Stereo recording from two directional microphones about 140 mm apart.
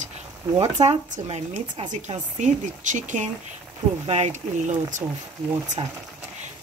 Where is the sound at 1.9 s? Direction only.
60° right (ahead or behind).